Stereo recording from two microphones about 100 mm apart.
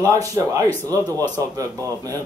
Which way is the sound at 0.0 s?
30° right (ahead or behind).